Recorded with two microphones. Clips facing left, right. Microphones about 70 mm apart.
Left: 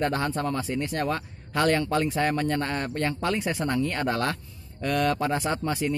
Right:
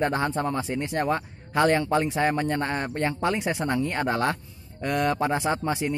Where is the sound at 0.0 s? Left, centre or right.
Right.